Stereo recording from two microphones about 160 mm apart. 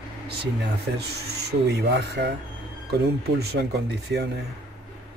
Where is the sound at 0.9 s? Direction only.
90° right.